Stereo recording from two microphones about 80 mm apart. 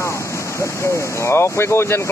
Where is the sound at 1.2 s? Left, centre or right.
Left.